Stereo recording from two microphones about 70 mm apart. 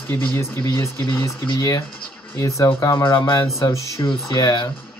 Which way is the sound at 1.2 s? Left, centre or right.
Left.